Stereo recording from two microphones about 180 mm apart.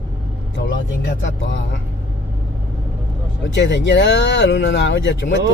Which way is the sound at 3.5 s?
80° left.